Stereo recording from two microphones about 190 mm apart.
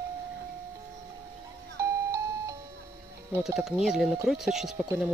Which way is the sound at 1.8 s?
15° right (ahead or behind).